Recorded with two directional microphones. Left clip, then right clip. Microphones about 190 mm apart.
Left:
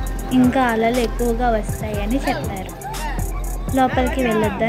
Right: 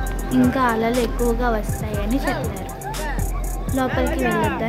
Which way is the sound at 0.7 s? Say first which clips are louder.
Left 2 dB; 5° left (ahead or behind).